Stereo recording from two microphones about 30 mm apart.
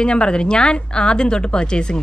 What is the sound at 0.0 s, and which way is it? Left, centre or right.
A woman's voice, left.